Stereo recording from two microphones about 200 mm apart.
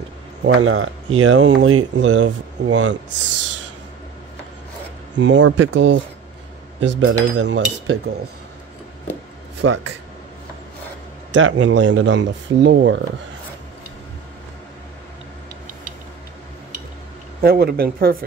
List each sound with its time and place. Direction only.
0.4 s speech: 80° right
5.1 s speech: 65° right (ahead or behind)
7.3 s dishes: 65° right (ahead or behind)
9.6 s speech: 90° right
11.3 s speech: 70° right (ahead or behind)
17.4 s speech: 50° right (ahead or behind)